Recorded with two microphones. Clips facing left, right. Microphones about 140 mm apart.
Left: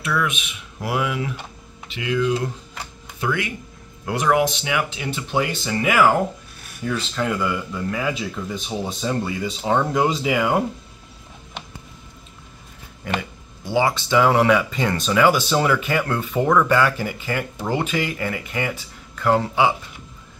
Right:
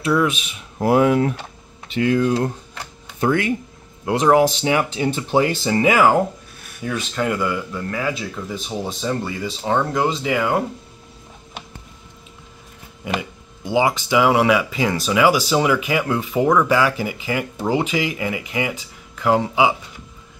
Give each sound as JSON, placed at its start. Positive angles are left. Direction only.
{"t": 0.0, "sound": "speech", "side_deg": -30}
{"t": 4.0, "sound": "speech", "side_deg": -25}
{"t": 6.8, "sound": "speech", "side_deg": -5}
{"t": 13.0, "sound": "speech", "side_deg": -15}